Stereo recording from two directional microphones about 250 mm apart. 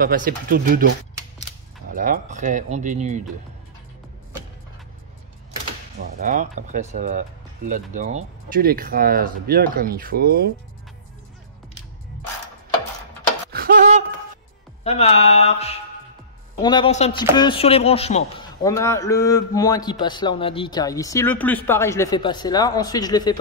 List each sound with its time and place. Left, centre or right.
0.0 s speech: right
6.2 s speech: right
13.5 s a sound: right
14.8 s music: left
16.6 s speech: centre
18.6 s a man's voice: centre